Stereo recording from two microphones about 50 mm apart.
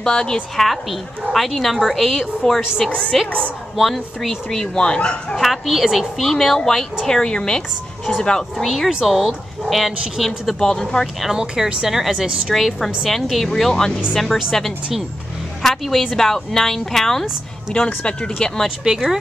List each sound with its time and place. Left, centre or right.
0.0 s a woman's voice: centre
4.5 s speech: centre
5.3 s speech: centre
8.6 s a woman's voice: centre
11.3 s a woman's voice: centre
17.7 s speech: left
18.9 s speech: centre